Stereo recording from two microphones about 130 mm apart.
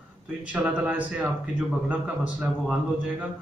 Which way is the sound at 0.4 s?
10° right (ahead or behind).